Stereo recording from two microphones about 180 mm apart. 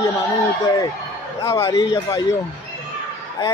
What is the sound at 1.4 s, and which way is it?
Speech, 15° left (ahead or behind).